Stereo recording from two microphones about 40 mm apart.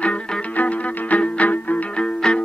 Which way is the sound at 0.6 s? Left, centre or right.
Left.